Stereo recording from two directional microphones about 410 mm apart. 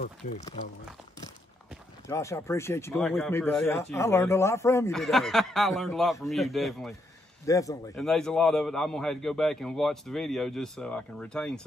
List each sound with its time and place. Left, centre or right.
0.0 s speech: centre
2.0 s speech: centre